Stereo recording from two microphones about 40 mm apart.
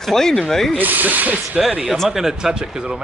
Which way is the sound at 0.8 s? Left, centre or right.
Right.